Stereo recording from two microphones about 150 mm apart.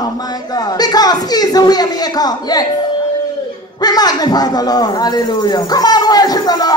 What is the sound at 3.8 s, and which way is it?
Speech, 25° left (ahead or behind).